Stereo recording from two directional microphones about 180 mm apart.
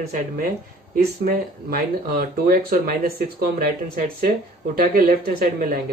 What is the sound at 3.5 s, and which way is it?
Speech, 50° right (ahead or behind).